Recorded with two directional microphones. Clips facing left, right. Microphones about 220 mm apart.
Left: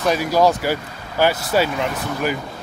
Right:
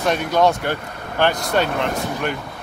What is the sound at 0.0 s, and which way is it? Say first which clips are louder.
Speech: left 1 dB; centre (ahead or behind).